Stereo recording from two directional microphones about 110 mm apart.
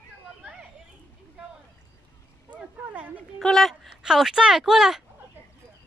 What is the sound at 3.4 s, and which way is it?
Speech, centre (ahead or behind).